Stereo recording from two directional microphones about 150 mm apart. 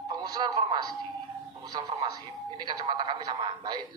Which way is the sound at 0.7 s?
30° right (ahead or behind).